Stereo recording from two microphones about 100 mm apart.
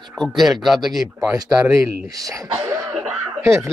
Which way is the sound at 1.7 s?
30° right (ahead or behind).